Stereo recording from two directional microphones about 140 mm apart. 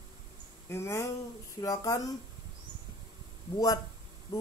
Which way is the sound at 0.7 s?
20° left (ahead or behind).